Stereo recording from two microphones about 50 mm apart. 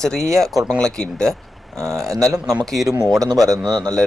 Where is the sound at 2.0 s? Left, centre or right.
Right.